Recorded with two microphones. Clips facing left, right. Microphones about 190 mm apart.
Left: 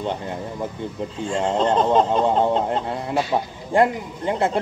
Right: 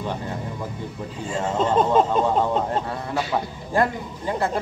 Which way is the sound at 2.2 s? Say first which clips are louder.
Left 2 dB; 20° left (ahead or behind).